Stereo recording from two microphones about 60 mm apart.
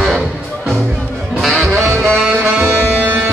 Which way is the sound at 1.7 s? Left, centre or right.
Right.